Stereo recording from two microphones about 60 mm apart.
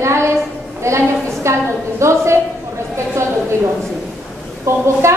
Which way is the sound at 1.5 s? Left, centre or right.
Right.